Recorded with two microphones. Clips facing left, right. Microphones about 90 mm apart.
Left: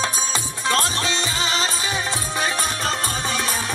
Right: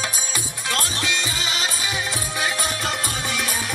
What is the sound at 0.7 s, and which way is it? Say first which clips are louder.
Music: left 3 dB; 25° left (ahead or behind).